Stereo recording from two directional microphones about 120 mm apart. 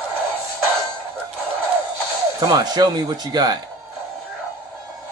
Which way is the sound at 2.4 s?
30° right (ahead or behind).